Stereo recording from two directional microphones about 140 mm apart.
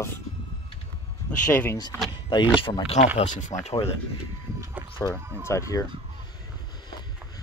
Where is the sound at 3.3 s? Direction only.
60° left (ahead or behind).